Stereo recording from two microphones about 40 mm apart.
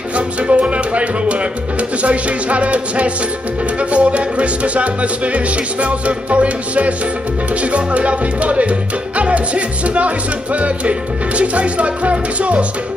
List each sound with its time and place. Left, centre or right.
0.1 s speech: right
3.9 s music: right